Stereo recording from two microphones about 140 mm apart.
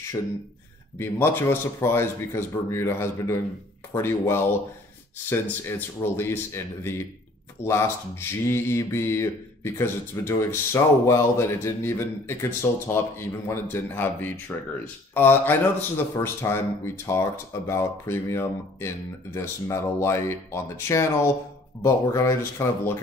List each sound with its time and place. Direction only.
0.9 s speech: 15° left (ahead or behind)